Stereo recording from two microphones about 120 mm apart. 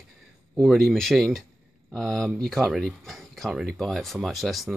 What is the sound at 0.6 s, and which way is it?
Speech, centre (ahead or behind).